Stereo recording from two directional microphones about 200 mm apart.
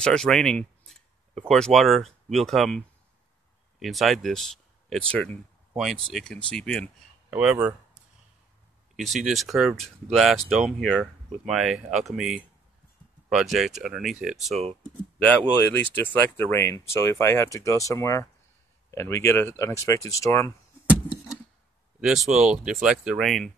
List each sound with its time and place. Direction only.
0.0 s a sound: 5° left (ahead or behind)
1.5 s speech: centre (ahead or behind)
3.8 s speech: centre (ahead or behind)
7.2 s speech: 5° right (ahead or behind)
8.9 s speech: centre (ahead or behind); by 20.5 s 15° left (ahead or behind)
22.0 s speech: centre (ahead or behind)